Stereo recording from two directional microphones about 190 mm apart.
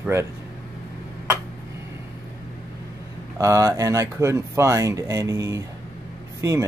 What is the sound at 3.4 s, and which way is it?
Speech, 15° right (ahead or behind).